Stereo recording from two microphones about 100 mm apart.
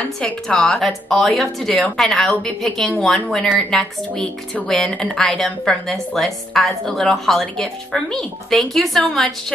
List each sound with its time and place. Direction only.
0.0 s speech: 10° left (ahead or behind)